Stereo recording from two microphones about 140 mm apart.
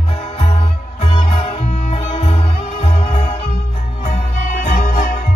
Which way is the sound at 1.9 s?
45° left (ahead or behind).